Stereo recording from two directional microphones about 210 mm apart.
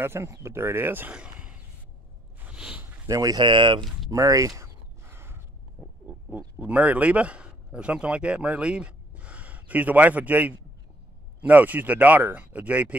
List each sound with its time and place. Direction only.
0.0 s speech: 10° right (ahead or behind)
2.4 s a sound: 5° right (ahead or behind); by 3.8 s 25° right (ahead or behind)
4.1 s speech: 15° right (ahead or behind)
5.1 s gasp: 10° right (ahead or behind)
6.0 s speech: 5° right (ahead or behind)